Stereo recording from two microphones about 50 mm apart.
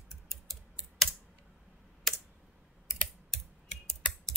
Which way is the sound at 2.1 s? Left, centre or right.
Centre.